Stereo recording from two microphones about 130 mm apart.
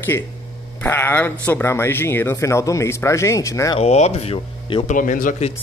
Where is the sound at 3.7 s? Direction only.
55° left (ahead or behind).